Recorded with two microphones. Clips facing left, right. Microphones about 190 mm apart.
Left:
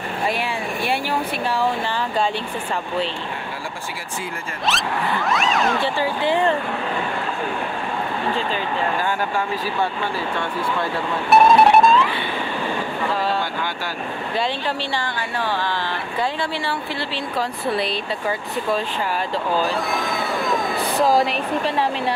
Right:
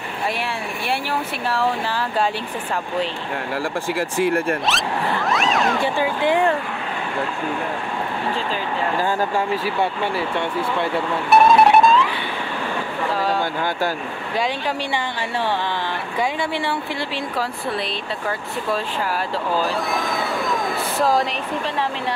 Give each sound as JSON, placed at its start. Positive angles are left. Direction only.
{"t": 4.2, "sound": "speech", "side_deg": -65}
{"t": 4.6, "sound": "speech", "side_deg": 0}
{"t": 5.9, "sound": "speech", "side_deg": -15}
{"t": 11.2, "sound": "music", "side_deg": 0}
{"t": 19.5, "sound": "cat", "side_deg": 0}